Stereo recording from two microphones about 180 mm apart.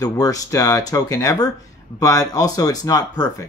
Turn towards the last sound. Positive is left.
turn(degrees=20)  # may be behind; listen again after turning